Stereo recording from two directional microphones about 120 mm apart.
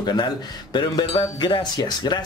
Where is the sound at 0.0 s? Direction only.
35° left (ahead or behind).